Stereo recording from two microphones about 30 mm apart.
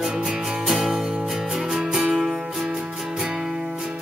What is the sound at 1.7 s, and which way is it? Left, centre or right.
Music, centre.